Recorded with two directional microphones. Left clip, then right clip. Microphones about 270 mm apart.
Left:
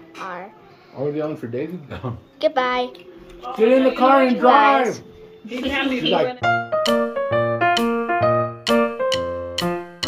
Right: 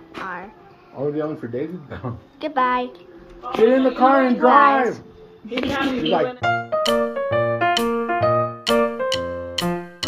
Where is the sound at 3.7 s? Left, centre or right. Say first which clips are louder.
Left 4 dB; left.